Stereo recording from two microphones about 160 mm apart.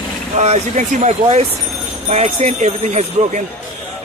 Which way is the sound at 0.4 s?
45° right (ahead or behind).